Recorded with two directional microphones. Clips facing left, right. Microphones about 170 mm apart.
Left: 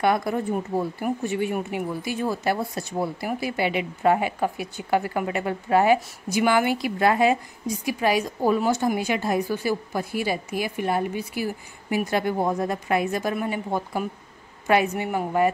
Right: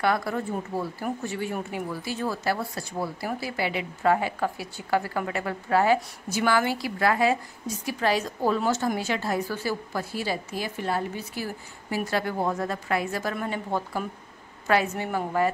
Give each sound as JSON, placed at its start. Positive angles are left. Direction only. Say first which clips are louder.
{"t": 0.0, "sound": "a woman's voice", "louder": "left 3 dB", "side_deg": 20}